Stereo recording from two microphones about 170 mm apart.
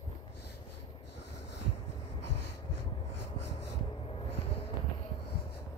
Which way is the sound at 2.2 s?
80° left.